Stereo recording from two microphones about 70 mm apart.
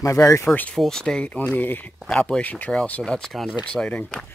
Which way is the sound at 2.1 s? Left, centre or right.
Centre.